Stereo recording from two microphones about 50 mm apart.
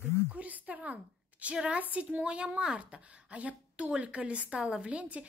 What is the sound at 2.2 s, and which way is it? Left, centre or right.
Speech, centre.